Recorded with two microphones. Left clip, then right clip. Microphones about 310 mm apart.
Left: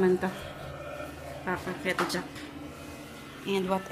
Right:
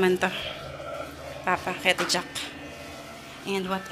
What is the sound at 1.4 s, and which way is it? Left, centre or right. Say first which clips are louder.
Speech: right 8 dB; centre.